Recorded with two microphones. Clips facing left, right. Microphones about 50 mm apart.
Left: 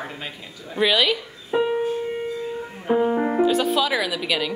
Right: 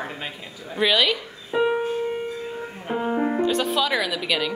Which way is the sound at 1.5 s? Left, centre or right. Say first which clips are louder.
Even; left.